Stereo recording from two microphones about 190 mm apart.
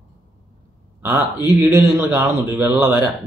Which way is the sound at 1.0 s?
15° right (ahead or behind).